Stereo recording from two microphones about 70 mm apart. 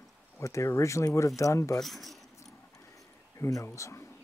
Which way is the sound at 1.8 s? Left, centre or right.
Centre.